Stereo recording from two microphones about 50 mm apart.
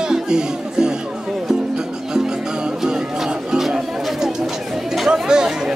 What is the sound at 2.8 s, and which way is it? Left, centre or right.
Chatter, centre.